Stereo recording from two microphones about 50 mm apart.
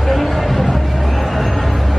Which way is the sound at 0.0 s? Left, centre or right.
Centre.